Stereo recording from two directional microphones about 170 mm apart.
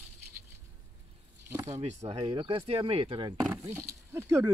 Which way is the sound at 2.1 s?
35° right (ahead or behind).